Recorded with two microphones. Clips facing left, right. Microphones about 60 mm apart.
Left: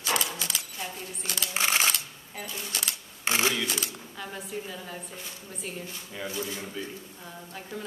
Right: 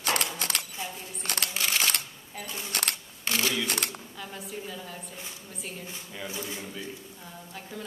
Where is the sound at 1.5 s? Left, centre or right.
Left.